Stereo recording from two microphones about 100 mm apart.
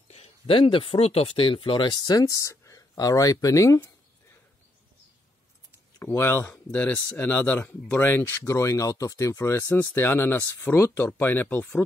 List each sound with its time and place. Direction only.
0.1 s speech: 80° left; by 3.9 s 30° left (ahead or behind)
6.0 s speech: 20° left (ahead or behind)
6.5 s speech: 15° left (ahead or behind)